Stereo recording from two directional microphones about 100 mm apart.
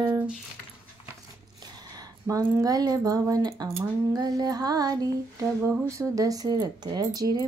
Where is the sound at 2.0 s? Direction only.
35° right (ahead or behind).